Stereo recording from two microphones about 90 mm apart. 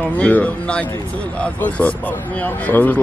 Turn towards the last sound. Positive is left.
turn(degrees=20)  # may be behind; listen again after turning